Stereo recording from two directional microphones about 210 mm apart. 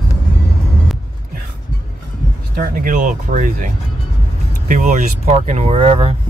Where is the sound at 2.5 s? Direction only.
45° right (ahead or behind).